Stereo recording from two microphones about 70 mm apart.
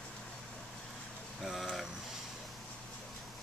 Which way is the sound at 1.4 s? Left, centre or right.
Centre.